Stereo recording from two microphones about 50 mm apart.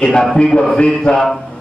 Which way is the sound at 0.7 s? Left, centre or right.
Centre.